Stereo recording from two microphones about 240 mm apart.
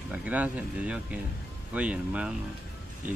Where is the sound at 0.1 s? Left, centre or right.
Centre.